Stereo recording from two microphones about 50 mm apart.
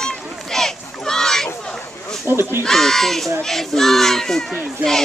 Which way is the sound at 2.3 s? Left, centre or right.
Right.